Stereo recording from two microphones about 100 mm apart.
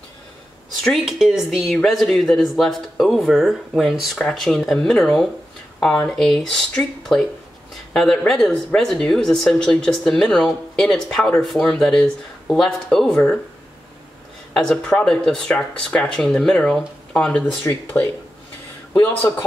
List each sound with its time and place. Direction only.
0.8 s speech: centre (ahead or behind)
14.5 s speech: 5° left (ahead or behind)